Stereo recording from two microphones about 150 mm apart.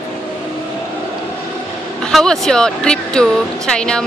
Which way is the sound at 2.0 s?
5° left (ahead or behind).